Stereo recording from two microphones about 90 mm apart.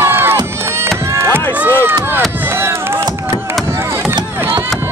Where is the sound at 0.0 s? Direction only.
25° right (ahead or behind).